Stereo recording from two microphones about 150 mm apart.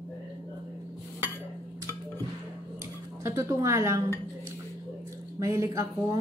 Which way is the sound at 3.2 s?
20° right (ahead or behind).